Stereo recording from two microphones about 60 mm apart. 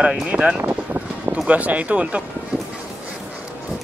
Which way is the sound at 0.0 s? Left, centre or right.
Centre.